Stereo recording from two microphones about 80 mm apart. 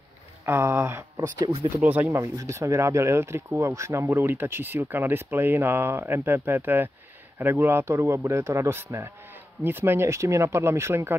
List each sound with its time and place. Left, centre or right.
0.5 s a man's voice: right
1.8 s speech: centre
2.0 s a man's voice: right